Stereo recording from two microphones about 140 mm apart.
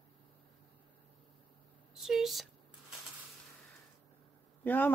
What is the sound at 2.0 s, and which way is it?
Speech, centre (ahead or behind).